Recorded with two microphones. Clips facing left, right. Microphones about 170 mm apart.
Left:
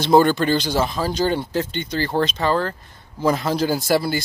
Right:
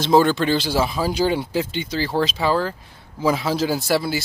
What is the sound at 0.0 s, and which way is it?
Speech, centre (ahead or behind).